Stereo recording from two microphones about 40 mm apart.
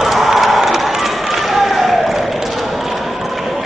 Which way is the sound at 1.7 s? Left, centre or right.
Centre.